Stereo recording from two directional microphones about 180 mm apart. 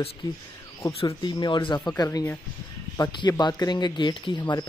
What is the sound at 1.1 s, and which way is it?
Speech, 25° left (ahead or behind).